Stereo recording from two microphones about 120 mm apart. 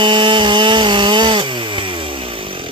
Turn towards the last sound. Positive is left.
turn(degrees=-45)  # may be behind; listen again after turning